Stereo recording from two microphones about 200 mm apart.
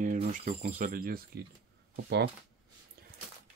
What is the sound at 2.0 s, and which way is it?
Speech, 55° right (ahead or behind).